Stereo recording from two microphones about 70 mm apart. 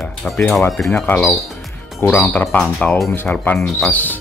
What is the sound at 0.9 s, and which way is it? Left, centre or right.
Speech, left.